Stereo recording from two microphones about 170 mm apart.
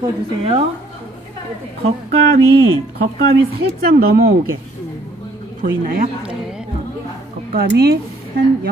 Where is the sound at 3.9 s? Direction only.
60° right (ahead or behind).